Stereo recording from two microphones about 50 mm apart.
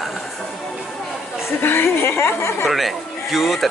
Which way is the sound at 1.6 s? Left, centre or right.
Left.